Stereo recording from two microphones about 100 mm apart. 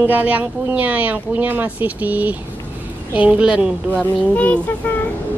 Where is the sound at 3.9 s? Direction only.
15° left (ahead or behind).